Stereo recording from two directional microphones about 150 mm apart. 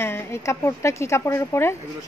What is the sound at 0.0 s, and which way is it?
Speech, 15° left (ahead or behind).